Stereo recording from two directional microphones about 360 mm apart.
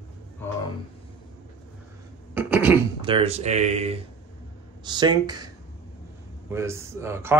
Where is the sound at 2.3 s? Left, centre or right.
Centre.